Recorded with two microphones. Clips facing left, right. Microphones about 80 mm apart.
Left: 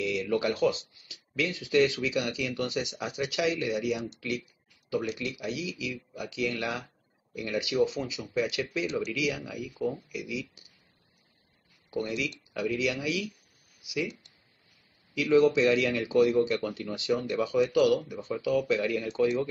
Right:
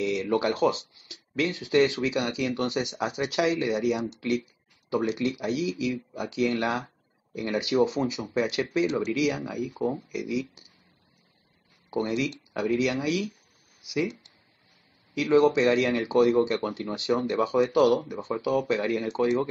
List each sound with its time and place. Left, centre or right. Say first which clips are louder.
0.0 s speech: right 3 dB; right
9.1 s speech: right 5 dB; right
11.9 s speech: right 4 dB; right
15.1 s speech: right 2 dB; right
17.6 s speech: right 2 dB; right